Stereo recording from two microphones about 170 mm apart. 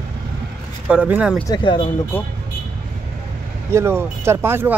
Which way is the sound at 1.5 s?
30° left (ahead or behind).